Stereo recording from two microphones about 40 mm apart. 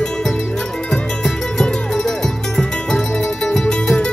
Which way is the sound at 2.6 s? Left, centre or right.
Centre.